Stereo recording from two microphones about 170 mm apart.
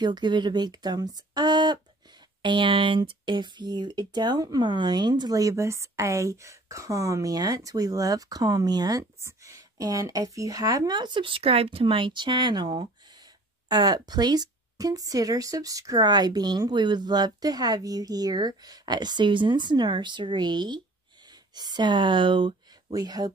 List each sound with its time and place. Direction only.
0.0 s speech: 25° right (ahead or behind)